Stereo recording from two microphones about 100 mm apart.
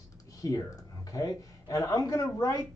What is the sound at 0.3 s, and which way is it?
Speech, 35° left (ahead or behind).